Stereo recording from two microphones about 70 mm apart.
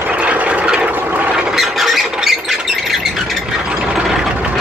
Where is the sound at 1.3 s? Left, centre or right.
Centre.